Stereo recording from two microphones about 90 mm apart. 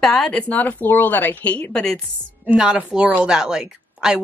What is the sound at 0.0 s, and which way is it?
A woman's voice, 5° left (ahead or behind).